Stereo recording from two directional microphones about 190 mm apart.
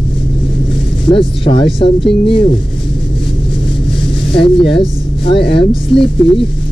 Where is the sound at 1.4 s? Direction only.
25° left (ahead or behind).